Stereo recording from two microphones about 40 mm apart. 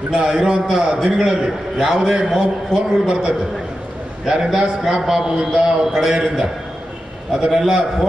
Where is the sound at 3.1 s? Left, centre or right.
Right.